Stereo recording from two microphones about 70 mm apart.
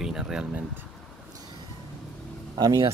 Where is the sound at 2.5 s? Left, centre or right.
Right.